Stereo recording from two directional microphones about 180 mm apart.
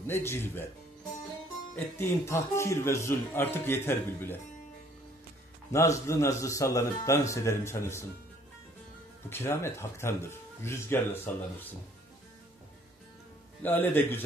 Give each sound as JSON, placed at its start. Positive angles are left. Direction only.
{"t": 0.0, "sound": "a man's voice", "side_deg": 15}
{"t": 2.0, "sound": "a man's voice", "side_deg": 15}
{"t": 5.7, "sound": "a man's voice", "side_deg": 15}
{"t": 9.3, "sound": "a man's voice", "side_deg": 15}
{"t": 13.6, "sound": "a man's voice", "side_deg": 10}